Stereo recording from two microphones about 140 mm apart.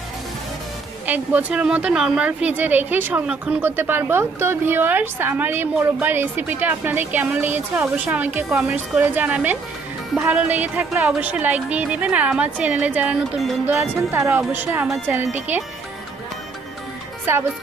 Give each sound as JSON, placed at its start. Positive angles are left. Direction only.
{"t": 1.0, "sound": "speech", "side_deg": -10}
{"t": 17.3, "sound": "speech", "side_deg": -15}